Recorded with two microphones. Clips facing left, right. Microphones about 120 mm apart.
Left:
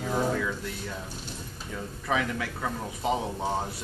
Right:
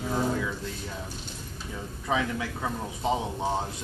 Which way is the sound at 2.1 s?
25° right (ahead or behind).